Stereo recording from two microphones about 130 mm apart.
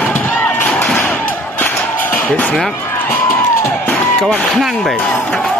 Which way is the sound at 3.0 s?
15° left (ahead or behind).